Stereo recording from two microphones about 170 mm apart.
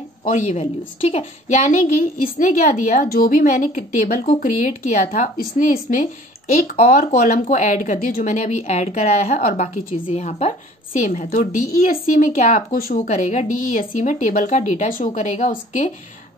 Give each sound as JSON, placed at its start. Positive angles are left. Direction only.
{"t": 0.2, "sound": "a woman's voice", "side_deg": 45}